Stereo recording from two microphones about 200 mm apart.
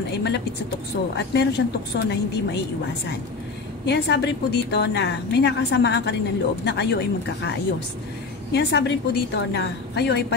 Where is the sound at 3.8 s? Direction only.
60° left (ahead or behind).